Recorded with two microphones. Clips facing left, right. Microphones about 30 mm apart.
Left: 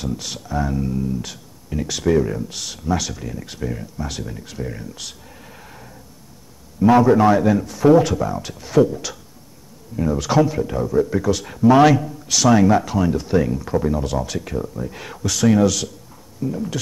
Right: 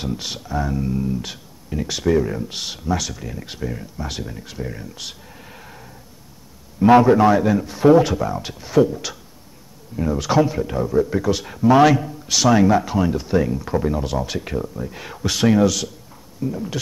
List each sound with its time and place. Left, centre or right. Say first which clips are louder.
0.0 s speech: even; right
0.5 s speech: left 1 dB; centre
0.9 s a man's voice: even; centre
2.4 s speech: right 2 dB; right
2.8 s a man's voice: left 2 dB; centre
6.8 s speech: right 1 dB; right
7.2 s speech: even; centre
7.6 s a man's voice: right 2 dB; right
8.6 s a man's voice: left 1 dB; centre
14.6 s speech: left 1 dB; centre
15.2 s speech: even; right
15.5 s speech: even; centre